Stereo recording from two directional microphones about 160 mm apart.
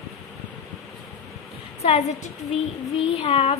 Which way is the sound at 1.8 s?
40° left (ahead or behind).